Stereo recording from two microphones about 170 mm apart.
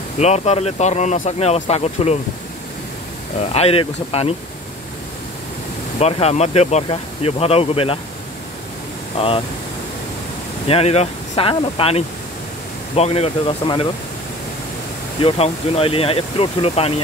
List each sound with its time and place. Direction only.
0.2 s speech: 40° left (ahead or behind)
3.3 s speech: 35° left (ahead or behind)
5.9 s speech: 40° left (ahead or behind)
10.7 s speech: 35° left (ahead or behind)
15.2 s speech: 35° left (ahead or behind)